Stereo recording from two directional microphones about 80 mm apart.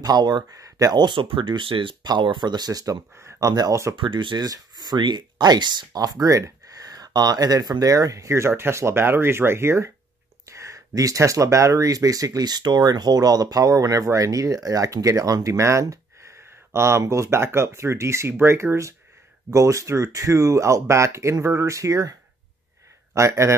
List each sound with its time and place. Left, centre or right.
0.0 s speech: right
0.5 s speech: right
0.9 s speech: right
3.9 s speech: right
4.5 s speech: right
23.1 s speech: right